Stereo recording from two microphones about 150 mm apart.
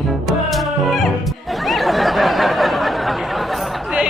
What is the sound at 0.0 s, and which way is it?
Music, centre (ahead or behind).